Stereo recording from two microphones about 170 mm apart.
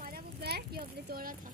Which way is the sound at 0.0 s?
65° right (ahead or behind).